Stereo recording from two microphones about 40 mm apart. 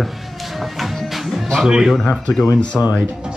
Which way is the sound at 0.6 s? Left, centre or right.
Centre.